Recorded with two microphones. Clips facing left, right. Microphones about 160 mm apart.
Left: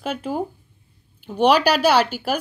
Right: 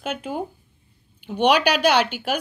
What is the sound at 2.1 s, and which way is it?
Speech, 35° left (ahead or behind).